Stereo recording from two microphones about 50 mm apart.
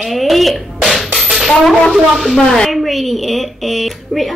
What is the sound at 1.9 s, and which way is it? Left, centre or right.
Speech, centre.